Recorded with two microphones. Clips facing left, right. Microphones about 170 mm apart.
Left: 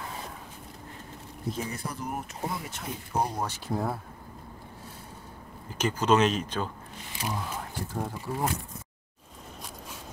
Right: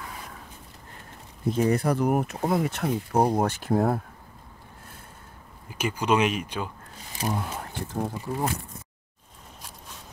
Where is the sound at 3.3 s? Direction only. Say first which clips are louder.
Right 8 dB; 55° right (ahead or behind).